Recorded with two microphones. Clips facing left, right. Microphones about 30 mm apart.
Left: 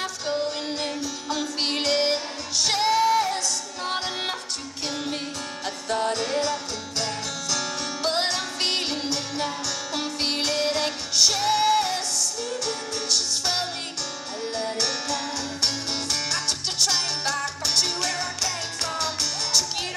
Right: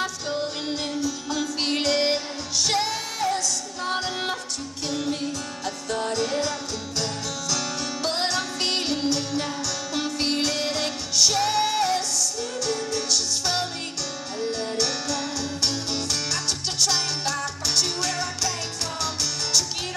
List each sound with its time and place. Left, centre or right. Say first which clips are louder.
0.0 s music: left 1 dB; centre
1.0 s music: right 2 dB; centre
7.5 s music: even; centre